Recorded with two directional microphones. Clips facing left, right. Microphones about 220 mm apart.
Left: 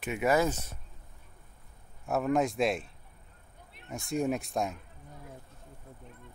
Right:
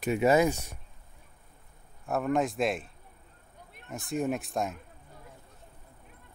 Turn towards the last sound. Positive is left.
turn(degrees=0)  # may be behind; listen again after turning